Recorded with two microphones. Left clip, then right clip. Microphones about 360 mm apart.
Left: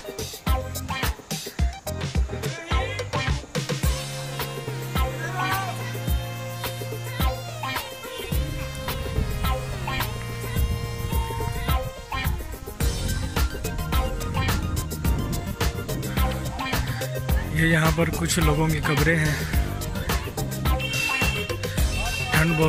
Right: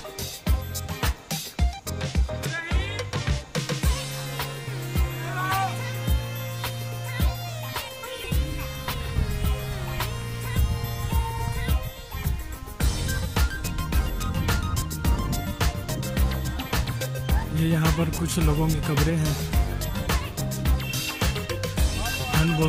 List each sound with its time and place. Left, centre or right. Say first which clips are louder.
1.0 s music: even; centre
4.9 s music: left 4 dB; centre
7.2 s music: left 5 dB; centre
9.4 s music: left 4 dB; centre
11.6 s music: left 5 dB; centre
13.3 s music: even; centre
15.6 s music: left 2 dB; centre